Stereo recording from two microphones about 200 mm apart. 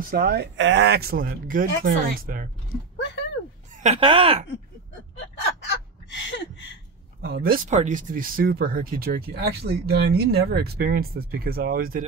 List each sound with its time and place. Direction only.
0.0 s speech: 45° right (ahead or behind)
3.8 s speech: 30° right (ahead or behind)
6.0 s a sound: 60° left (ahead or behind)
7.2 s speech: 50° right (ahead or behind)
7.7 s speech: 40° right (ahead or behind)